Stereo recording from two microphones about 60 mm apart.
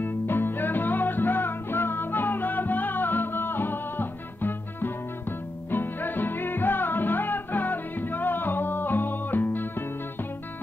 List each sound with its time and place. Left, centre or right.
0.0 s music: left